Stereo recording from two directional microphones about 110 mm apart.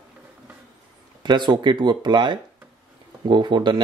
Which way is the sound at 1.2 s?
45° right (ahead or behind).